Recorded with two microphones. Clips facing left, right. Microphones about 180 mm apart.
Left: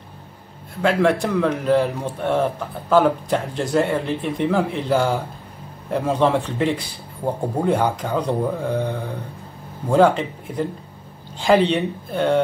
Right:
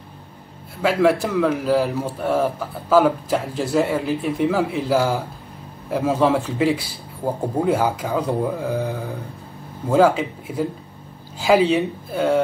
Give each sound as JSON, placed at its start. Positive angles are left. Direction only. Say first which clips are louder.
{"t": 0.8, "sound": "a man's voice", "louder": "right 1 dB", "side_deg": -5}